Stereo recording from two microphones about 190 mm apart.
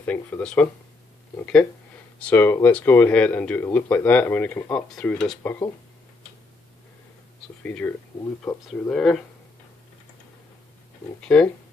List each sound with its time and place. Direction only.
0.0 s speech: 10° left (ahead or behind)
7.6 s speech: 10° left (ahead or behind)
8.5 s speech: 20° left (ahead or behind)
8.9 s speech: 5° left (ahead or behind)
11.2 s speech: 5° left (ahead or behind)